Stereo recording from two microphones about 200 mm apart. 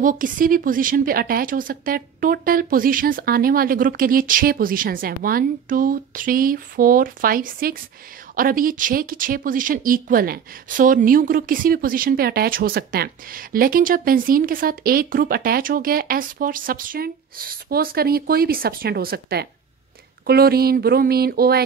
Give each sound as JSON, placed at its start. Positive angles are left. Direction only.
{"t": 0.0, "sound": "speech", "side_deg": -40}